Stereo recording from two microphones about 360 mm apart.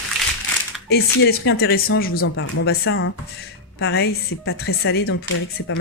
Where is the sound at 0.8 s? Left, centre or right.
Left.